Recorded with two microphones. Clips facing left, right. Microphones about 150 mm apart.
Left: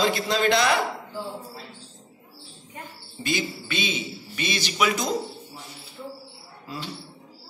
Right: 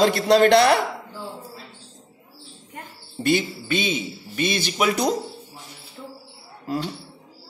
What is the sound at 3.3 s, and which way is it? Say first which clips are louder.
A man's voice: right 6 dB; 55° right (ahead or behind).